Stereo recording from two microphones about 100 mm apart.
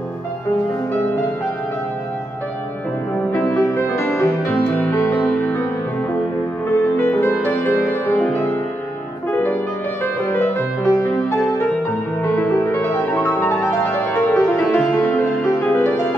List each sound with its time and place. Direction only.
3.6 s music: 25° left (ahead or behind)
7.0 s music: 20° left (ahead or behind)
12.3 s music: 25° left (ahead or behind)
14.7 s music: 15° left (ahead or behind)